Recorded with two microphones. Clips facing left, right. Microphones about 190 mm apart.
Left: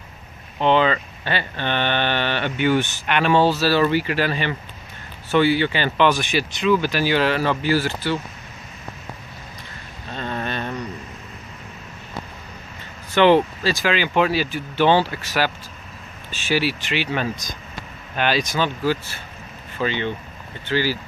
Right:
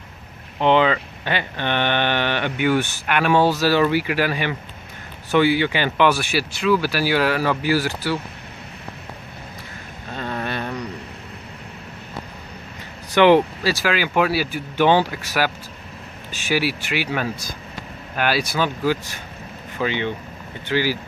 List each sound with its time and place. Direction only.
0.6 s speech: 15° right (ahead or behind)
10.1 s a sound: 10° right (ahead or behind)
13.1 s speech: 15° right (ahead or behind)